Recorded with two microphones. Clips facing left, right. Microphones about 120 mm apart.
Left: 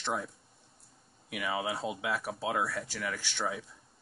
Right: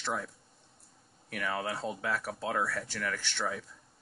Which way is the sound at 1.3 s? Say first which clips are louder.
Left 1 dB; 10° left (ahead or behind).